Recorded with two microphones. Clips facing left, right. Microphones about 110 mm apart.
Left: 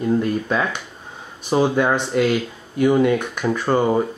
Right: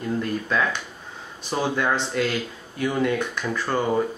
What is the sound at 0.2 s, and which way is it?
Speech, 15° left (ahead or behind).